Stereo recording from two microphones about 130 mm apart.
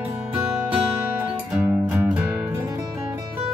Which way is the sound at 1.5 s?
10° right (ahead or behind).